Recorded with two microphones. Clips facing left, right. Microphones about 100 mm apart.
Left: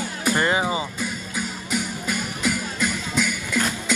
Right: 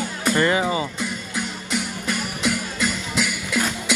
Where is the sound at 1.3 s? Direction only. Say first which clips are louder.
Even; 5° left (ahead or behind).